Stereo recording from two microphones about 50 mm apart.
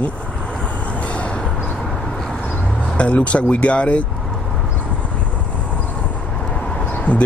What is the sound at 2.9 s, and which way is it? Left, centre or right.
Speech, left.